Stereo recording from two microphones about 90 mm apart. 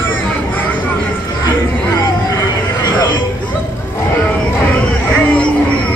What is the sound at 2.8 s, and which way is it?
Music, 55° left (ahead or behind).